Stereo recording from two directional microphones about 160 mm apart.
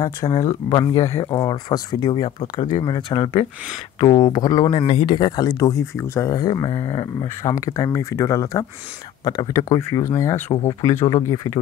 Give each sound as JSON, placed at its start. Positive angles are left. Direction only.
{"t": 0.0, "sound": "speech", "side_deg": 25}